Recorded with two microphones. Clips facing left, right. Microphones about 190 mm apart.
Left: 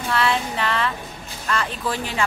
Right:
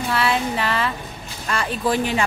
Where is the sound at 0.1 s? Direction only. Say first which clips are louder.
Even; 5° right (ahead or behind).